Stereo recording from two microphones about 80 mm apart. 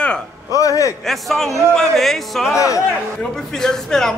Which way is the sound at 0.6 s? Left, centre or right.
Left.